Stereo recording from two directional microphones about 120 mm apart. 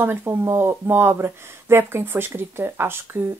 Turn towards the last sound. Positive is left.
turn(degrees=-20)  # may be behind; listen again after turning